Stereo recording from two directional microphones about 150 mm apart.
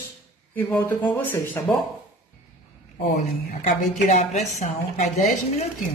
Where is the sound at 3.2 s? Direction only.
55° left (ahead or behind).